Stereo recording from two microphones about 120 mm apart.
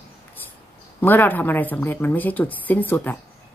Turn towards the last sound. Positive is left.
turn(degrees=15)  # may be behind; listen again after turning